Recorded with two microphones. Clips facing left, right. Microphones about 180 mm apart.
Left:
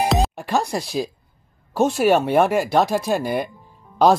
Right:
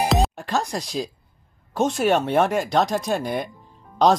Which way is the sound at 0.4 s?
15° left (ahead or behind).